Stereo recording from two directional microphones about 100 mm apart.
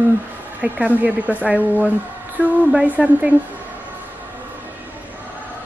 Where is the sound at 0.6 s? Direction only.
15° right (ahead or behind).